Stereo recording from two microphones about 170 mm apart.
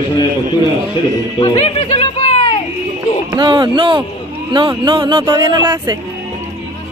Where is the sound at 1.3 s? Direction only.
30° left (ahead or behind).